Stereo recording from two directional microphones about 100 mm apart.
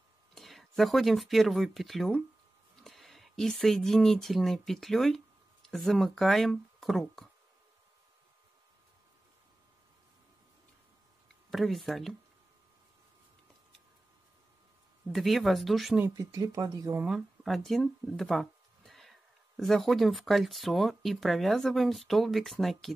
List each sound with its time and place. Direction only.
0.3 s speech: centre (ahead or behind)
11.5 s speech: centre (ahead or behind)
15.1 s speech: centre (ahead or behind)
16.2 s speech: 35° right (ahead or behind)
17.0 s speech: 5° right (ahead or behind)